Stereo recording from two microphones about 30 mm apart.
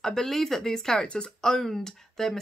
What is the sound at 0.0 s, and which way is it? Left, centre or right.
Speech, centre.